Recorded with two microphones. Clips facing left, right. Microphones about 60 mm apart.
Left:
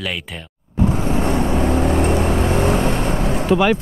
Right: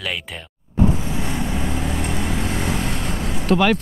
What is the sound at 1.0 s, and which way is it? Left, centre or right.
Vehicle, left.